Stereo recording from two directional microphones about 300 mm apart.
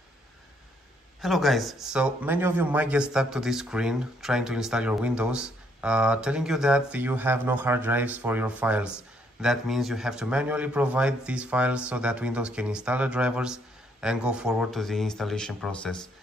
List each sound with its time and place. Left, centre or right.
1.2 s speech: centre